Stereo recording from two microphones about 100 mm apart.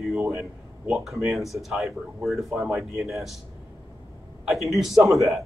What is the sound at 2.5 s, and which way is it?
Speech, 25° right (ahead or behind).